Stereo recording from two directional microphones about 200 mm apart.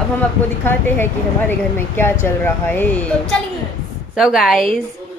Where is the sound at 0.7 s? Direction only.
10° left (ahead or behind).